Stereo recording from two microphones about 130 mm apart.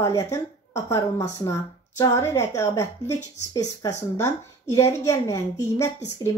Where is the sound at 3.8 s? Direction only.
25° left (ahead or behind).